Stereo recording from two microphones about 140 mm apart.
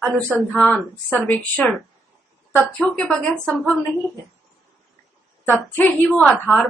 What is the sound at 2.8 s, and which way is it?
Speech, 5° left (ahead or behind).